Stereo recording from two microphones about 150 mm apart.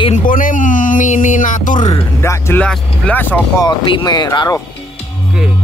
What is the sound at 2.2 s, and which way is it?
Speech, 15° left (ahead or behind).